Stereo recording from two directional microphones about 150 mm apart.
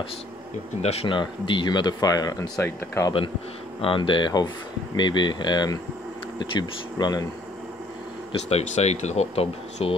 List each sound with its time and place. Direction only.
0.8 s speech: 40° left (ahead or behind); by 3.1 s 15° left (ahead or behind)
3.8 s speech: 35° left (ahead or behind)
8.3 s speech: 45° left (ahead or behind)